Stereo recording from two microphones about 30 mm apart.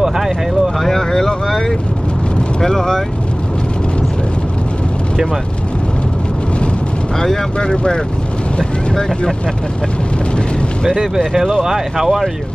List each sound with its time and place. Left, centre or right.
0.8 s speech: centre
7.6 s speech: left
11.6 s speech: centre